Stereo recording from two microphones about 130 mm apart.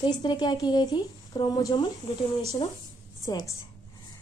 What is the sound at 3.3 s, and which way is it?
Speech, 35° left (ahead or behind).